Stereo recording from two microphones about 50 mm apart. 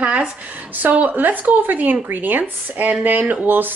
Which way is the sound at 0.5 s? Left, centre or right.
Right.